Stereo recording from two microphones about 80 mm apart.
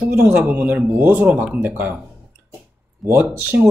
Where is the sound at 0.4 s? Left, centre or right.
Right.